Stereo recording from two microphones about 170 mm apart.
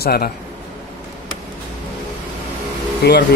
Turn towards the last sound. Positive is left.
turn(degrees=80)